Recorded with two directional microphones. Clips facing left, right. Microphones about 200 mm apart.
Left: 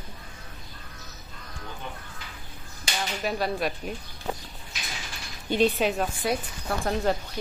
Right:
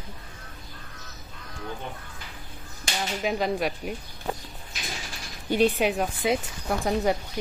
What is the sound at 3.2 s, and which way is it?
Speech, 15° right (ahead or behind).